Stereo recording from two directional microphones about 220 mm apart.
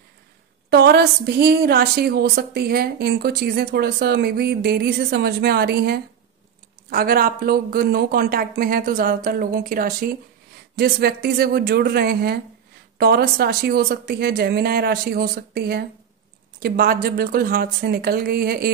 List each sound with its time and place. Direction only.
0.7 s a woman's voice: 45° right (ahead or behind)